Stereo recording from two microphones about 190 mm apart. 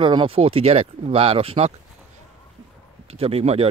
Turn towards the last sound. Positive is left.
turn(degrees=-30)  # may be behind; listen again after turning